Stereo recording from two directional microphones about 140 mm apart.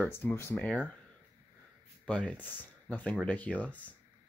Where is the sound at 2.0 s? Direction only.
10° left (ahead or behind).